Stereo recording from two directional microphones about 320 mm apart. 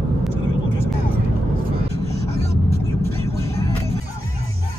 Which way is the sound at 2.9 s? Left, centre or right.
Centre.